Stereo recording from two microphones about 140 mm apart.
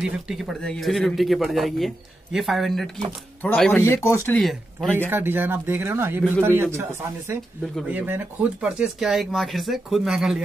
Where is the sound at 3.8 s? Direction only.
20° left (ahead or behind).